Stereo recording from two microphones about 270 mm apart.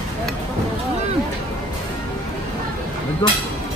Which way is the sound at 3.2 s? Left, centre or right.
Centre.